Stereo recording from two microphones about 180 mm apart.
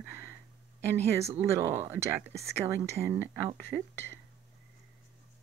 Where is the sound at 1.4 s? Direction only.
15° right (ahead or behind).